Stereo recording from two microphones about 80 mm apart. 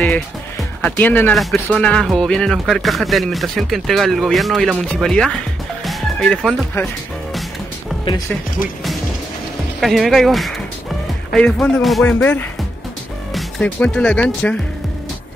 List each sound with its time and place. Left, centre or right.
0.8 s speech: left
1.3 s speech: centre
1.8 s speech: centre
5.9 s music: centre
9.8 s speech: centre
11.3 s speech: centre
13.6 s speech: centre